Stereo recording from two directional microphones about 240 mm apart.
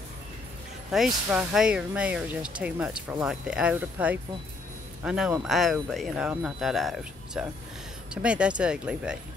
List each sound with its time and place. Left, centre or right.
0.9 s speech: centre